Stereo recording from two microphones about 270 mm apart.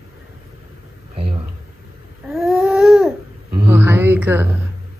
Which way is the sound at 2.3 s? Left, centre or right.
Centre.